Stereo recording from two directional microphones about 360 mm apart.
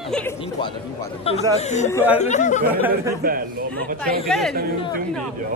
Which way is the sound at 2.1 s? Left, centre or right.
Centre.